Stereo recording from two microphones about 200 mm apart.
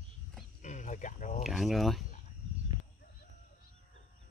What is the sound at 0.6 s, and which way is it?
Cricket, 35° left (ahead or behind).